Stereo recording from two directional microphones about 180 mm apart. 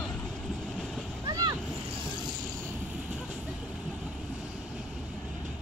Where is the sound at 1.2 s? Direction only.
20° right (ahead or behind).